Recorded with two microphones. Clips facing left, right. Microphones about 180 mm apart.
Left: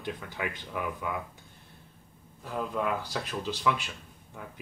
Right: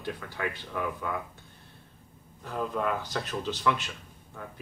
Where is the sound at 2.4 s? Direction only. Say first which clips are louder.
Right 1 dB; 10° left (ahead or behind).